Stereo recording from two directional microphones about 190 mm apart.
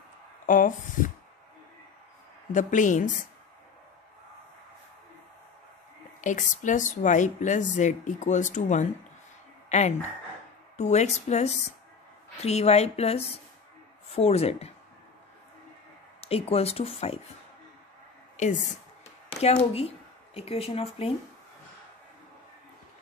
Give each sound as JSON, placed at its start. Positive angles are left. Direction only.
{"t": 0.5, "sound": "speech", "side_deg": 45}
{"t": 2.5, "sound": "speech", "side_deg": 40}
{"t": 6.2, "sound": "speech", "side_deg": 40}
{"t": 16.2, "sound": "speech", "side_deg": 30}
{"t": 18.4, "sound": "speech", "side_deg": 40}